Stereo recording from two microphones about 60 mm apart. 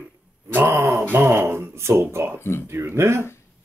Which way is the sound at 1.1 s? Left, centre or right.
Right.